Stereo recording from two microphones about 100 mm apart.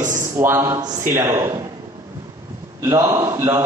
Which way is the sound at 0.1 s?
25° right (ahead or behind).